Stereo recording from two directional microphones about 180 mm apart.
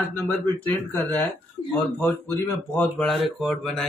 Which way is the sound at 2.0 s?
10° left (ahead or behind).